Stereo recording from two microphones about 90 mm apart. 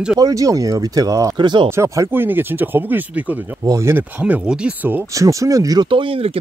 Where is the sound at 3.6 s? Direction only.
40° right (ahead or behind).